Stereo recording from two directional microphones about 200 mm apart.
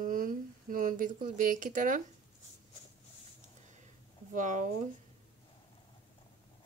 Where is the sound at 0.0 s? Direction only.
45° right (ahead or behind).